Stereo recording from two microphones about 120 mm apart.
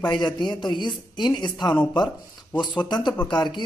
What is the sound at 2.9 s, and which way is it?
Speech, 40° left (ahead or behind).